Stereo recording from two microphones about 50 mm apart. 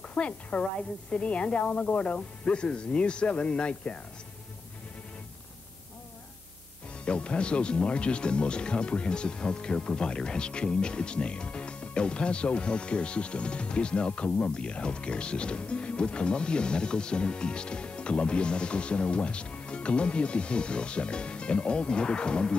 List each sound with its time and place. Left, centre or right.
0.1 s a woman's voice: left
7.1 s speech: left